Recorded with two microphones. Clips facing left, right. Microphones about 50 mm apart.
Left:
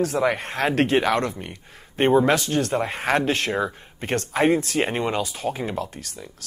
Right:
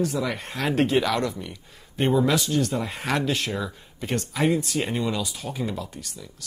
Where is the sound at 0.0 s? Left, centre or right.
Left.